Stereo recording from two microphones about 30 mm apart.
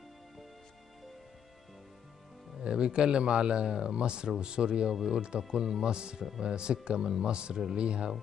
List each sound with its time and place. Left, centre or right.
2.6 s speech: right
5.5 s speech: centre
5.9 s speech: right
7.2 s speech: right